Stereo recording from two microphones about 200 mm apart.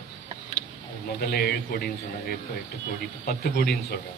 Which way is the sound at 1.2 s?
50° left (ahead or behind).